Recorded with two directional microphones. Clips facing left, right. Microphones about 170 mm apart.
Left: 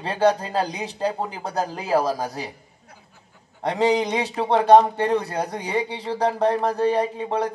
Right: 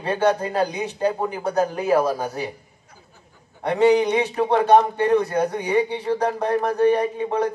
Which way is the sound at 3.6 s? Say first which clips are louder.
Right 4 dB; 35° left (ahead or behind).